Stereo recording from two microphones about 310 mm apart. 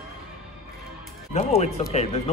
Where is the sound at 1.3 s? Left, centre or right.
Left.